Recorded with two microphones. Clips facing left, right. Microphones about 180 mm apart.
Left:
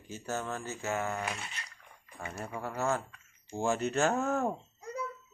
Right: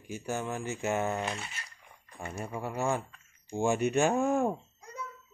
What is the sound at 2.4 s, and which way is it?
Speech, 15° right (ahead or behind).